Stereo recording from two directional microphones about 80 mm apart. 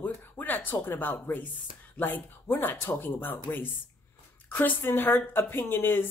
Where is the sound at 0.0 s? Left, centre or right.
Left.